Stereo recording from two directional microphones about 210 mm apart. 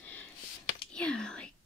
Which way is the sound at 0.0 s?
5° left (ahead or behind).